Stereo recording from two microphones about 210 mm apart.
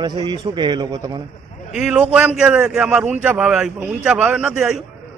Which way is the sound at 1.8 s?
5° right (ahead or behind).